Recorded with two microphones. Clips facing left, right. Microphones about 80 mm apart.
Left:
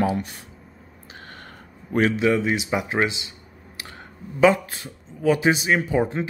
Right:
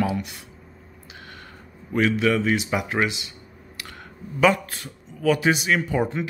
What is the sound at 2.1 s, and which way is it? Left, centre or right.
Speech, left.